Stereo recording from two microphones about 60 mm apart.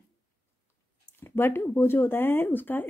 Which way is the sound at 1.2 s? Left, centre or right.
Left.